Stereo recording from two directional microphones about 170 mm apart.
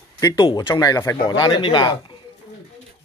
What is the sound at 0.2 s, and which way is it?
Speech, 20° left (ahead or behind).